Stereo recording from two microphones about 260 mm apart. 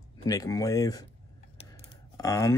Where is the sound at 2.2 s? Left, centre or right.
Centre.